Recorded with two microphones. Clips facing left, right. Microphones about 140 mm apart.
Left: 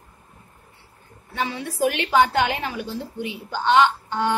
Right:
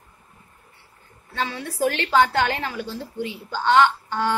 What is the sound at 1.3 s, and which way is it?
A woman's voice, 15° left (ahead or behind).